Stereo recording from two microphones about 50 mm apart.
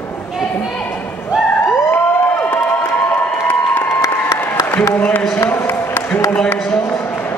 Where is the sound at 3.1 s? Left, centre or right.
Left.